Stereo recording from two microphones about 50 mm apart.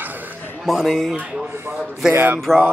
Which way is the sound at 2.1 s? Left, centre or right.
Right.